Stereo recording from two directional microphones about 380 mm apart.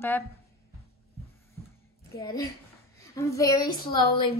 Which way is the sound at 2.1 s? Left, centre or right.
Centre.